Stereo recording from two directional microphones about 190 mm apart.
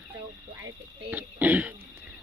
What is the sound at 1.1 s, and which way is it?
Throat clearing, 10° right (ahead or behind).